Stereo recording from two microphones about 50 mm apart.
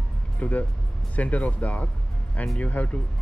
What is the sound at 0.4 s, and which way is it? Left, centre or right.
Speech, left.